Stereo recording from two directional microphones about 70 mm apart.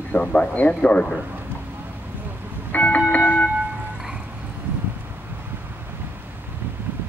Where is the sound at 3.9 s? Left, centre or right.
Centre.